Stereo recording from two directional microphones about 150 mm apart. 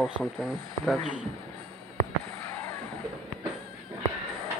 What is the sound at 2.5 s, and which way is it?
Music, 15° left (ahead or behind).